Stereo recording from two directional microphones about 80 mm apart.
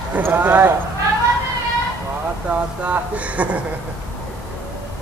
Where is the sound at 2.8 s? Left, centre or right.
Centre.